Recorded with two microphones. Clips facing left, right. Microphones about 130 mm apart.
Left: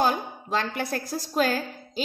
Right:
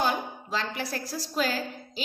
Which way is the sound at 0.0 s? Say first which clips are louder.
Left 3 dB; 50° left (ahead or behind).